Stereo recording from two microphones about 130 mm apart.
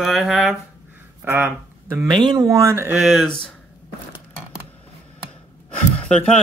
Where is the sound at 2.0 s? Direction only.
35° right (ahead or behind).